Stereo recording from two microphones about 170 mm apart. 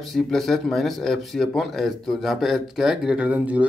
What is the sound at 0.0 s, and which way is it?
Speech, centre (ahead or behind).